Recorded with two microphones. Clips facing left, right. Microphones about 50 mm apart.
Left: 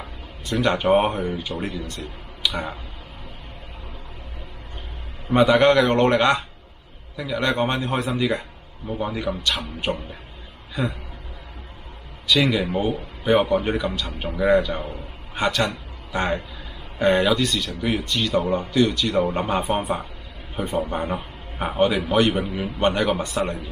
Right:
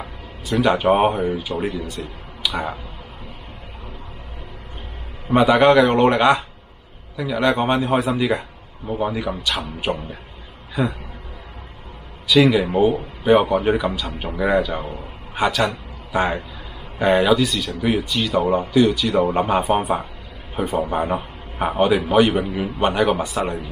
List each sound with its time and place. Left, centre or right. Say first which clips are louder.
0.0 s speech: right 3 dB; centre
5.3 s a man's voice: right 2 dB; centre
12.3 s a man's voice: right 5 dB; centre